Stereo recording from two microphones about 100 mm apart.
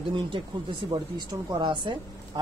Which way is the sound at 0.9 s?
50° right (ahead or behind).